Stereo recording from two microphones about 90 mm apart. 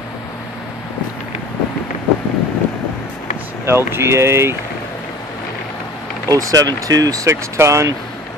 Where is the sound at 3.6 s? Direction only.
30° right (ahead or behind).